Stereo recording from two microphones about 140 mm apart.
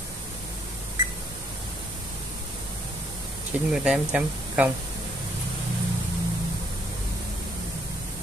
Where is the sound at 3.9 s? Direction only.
5° right (ahead or behind).